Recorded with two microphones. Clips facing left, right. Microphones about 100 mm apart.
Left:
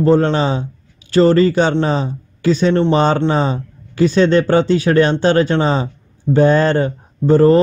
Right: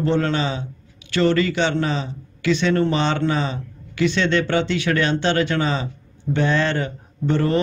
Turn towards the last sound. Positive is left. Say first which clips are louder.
# left 10 dB
turn(degrees=40)  # may be behind; listen again after turning